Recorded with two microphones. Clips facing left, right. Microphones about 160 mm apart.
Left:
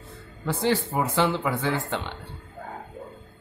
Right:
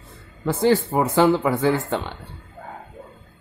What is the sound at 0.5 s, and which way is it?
Speech, 45° right (ahead or behind).